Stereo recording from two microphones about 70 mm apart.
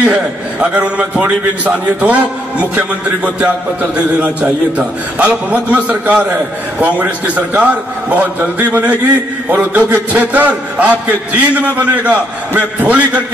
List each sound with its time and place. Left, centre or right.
0.0 s a man's voice: centre
4.2 s a man's voice: centre